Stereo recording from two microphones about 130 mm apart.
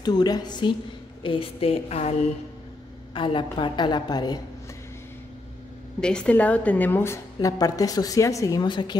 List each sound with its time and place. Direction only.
0.0 s a woman's voice: 30° left (ahead or behind); by 2.1 s 55° left (ahead or behind)
3.2 s a woman's voice: 40° left (ahead or behind)
5.9 s a woman's voice: 5° left (ahead or behind)
7.3 s a woman's voice: 30° left (ahead or behind)